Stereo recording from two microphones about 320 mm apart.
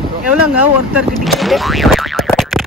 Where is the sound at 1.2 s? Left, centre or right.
Centre.